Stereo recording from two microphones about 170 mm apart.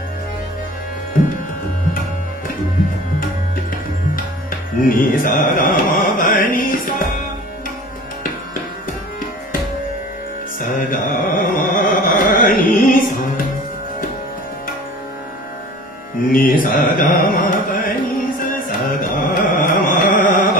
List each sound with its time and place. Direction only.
4.8 s music: 50° left (ahead or behind)
10.6 s music: 55° left (ahead or behind)
16.3 s music: 55° left (ahead or behind)
18.4 s carnatic music: 55° left (ahead or behind)